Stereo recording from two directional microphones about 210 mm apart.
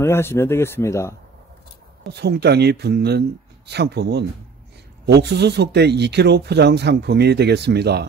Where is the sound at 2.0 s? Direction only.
50° right (ahead or behind).